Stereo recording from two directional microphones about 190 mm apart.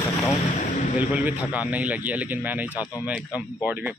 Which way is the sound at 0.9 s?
10° right (ahead or behind).